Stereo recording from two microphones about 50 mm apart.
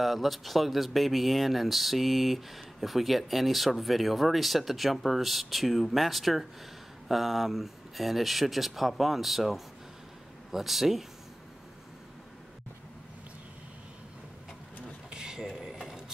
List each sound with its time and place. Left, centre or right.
0.0 s speech: centre
15.0 s a sound: centre
15.4 s mechanisms: centre